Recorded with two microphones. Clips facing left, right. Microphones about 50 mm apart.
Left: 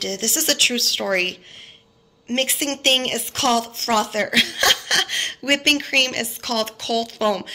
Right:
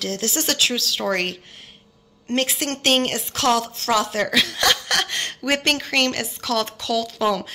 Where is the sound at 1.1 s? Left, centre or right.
Left.